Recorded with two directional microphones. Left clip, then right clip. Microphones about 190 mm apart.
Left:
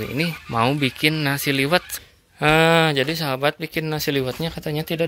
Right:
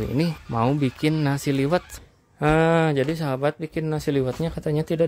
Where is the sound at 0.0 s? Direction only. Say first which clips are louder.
Left 1 dB; 20° right (ahead or behind).